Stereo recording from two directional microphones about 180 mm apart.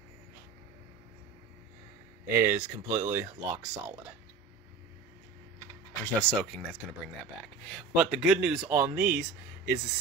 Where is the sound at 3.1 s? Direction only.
10° right (ahead or behind).